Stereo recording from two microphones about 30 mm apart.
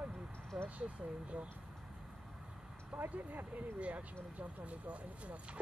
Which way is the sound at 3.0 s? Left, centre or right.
Right.